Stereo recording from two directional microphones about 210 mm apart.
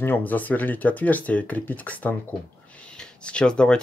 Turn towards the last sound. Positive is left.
turn(degrees=5)  # may be behind; listen again after turning